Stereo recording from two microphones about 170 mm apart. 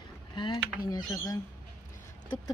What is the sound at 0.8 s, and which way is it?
Speech, 25° left (ahead or behind).